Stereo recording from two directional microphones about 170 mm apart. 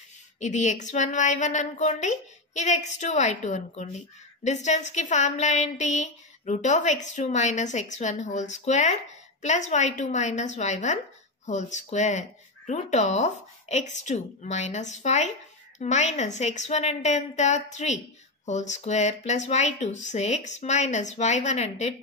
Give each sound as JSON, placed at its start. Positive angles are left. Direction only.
{"t": 0.4, "sound": "a woman's voice", "side_deg": 45}